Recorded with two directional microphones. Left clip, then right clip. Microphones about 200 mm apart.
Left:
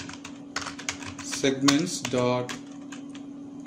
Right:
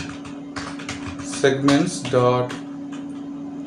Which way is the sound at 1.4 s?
40° left (ahead or behind).